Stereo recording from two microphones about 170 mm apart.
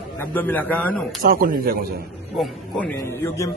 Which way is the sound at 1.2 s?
55° right (ahead or behind).